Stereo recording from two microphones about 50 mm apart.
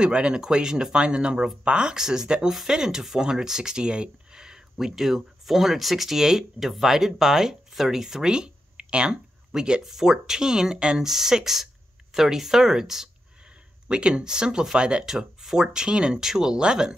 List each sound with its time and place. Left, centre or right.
0.0 s speech: centre
15.1 s speech: centre